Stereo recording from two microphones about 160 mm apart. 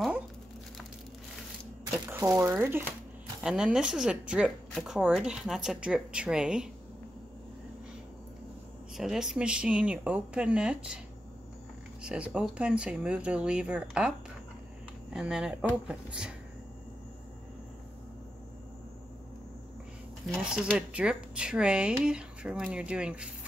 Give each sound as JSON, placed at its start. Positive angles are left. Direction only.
{"t": 2.0, "sound": "speech", "side_deg": -15}
{"t": 3.4, "sound": "speech", "side_deg": -5}
{"t": 8.9, "sound": "speech", "side_deg": 0}
{"t": 12.0, "sound": "speech", "side_deg": -5}
{"t": 15.1, "sound": "speech", "side_deg": -5}
{"t": 20.4, "sound": "speech", "side_deg": -5}